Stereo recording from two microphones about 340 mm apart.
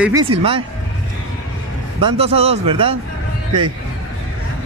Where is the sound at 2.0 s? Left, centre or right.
Centre.